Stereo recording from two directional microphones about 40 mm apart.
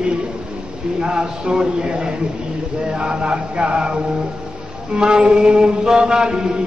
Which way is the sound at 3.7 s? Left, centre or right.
Right.